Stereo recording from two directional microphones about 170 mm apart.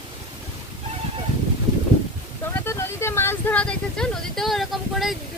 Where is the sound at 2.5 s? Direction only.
15° left (ahead or behind).